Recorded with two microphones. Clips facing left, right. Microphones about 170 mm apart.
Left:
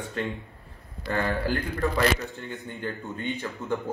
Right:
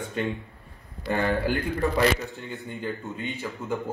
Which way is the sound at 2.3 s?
5° right (ahead or behind).